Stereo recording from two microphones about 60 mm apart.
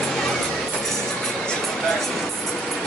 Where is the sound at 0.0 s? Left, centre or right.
Centre.